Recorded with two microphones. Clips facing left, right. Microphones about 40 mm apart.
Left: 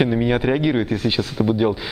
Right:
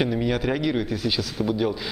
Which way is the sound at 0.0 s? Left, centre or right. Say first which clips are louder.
Left 5 dB; left.